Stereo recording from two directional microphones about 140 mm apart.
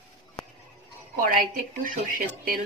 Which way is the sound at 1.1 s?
80° right.